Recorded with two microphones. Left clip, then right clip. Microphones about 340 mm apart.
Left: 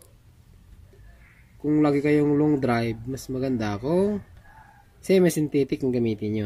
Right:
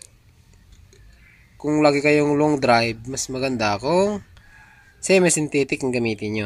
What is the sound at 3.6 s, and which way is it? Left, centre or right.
Speech, centre.